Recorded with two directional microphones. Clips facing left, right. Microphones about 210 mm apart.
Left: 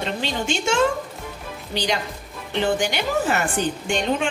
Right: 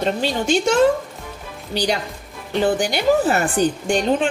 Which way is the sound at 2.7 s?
35° right (ahead or behind).